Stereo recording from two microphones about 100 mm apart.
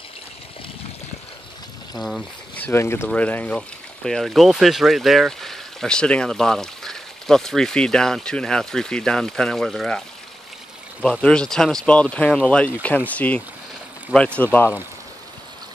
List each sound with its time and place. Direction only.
2.0 s speech: centre (ahead or behind)
2.5 s speech: 20° left (ahead or behind)